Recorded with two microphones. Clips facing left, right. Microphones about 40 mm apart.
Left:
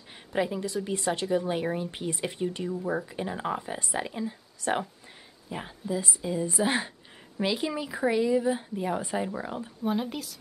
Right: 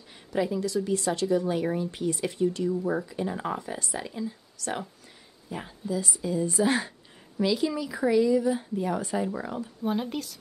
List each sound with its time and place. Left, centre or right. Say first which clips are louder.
0.3 s speech: right 2 dB; left
2.7 s speech: right 2 dB; centre
3.1 s speech: right 1 dB; left
9.8 s speech: even; centre